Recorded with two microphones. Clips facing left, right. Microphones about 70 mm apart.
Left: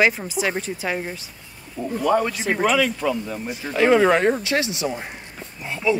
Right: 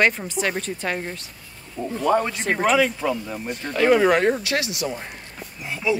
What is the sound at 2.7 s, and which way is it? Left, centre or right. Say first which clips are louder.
Speech: even; centre.